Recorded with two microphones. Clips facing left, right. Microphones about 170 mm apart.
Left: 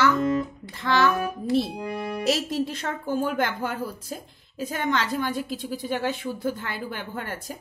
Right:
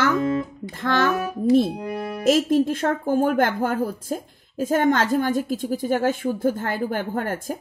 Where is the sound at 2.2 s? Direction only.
50° right (ahead or behind).